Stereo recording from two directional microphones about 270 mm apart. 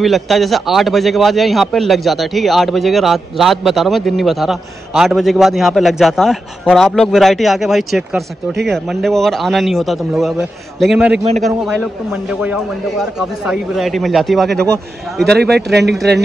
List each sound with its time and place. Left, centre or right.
0.0 s a man's voice: centre
15.5 s speech: right